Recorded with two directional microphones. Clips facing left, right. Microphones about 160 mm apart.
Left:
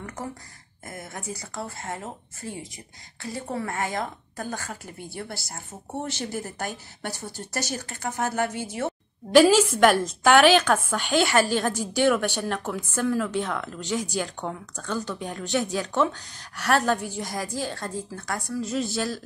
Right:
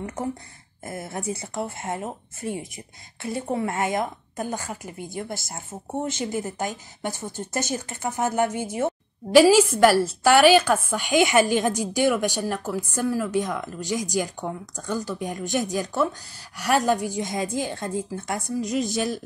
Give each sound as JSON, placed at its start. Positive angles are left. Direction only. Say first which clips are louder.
{"t": 0.0, "sound": "a woman's voice", "louder": "right 6 dB", "side_deg": -25}